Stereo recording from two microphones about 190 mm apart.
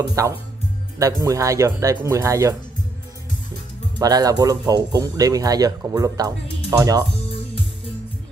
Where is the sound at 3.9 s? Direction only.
20° right (ahead or behind).